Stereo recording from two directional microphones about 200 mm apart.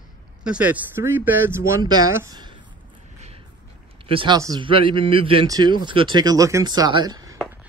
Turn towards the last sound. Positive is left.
turn(degrees=-20)  # may be behind; listen again after turning